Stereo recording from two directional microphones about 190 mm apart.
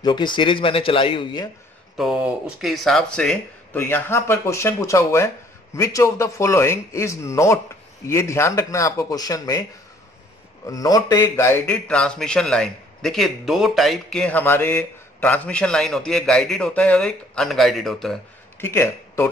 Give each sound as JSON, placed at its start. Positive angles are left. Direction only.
{"t": 0.0, "sound": "speech", "side_deg": 25}
{"t": 2.0, "sound": "speech", "side_deg": -5}
{"t": 10.7, "sound": "speech", "side_deg": 20}
{"t": 18.6, "sound": "a man's voice", "side_deg": 15}